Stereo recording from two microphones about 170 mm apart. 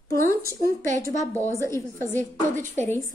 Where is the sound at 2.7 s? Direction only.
15° left (ahead or behind).